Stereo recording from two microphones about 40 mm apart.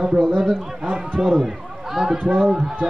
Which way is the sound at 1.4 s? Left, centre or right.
Centre.